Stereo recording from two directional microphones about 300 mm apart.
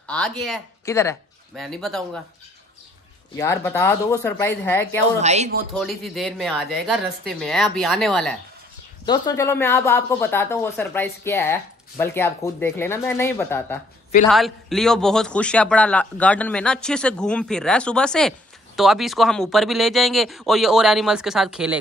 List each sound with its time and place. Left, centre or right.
0.0 s a man's voice: centre
3.3 s speech: centre
5.2 s a man's voice: right
5.8 s a man's voice: centre
9.0 s a man's voice: centre